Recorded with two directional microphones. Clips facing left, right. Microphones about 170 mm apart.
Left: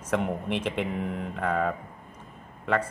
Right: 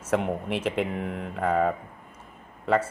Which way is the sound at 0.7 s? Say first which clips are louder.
Right 2 dB; 45° right (ahead or behind).